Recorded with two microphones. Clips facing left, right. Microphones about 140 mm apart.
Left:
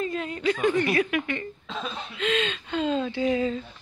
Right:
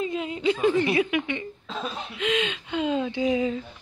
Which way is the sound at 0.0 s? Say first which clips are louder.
Right 1 dB; 15° right (ahead or behind).